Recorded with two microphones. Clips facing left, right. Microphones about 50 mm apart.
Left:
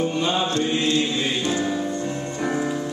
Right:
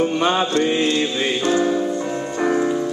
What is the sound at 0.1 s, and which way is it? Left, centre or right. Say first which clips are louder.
Mantra: right 4 dB; right.